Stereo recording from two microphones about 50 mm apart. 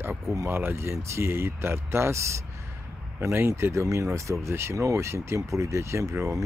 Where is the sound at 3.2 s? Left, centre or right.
Right.